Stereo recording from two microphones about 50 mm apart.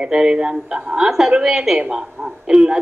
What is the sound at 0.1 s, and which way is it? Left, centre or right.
A woman's voice, centre.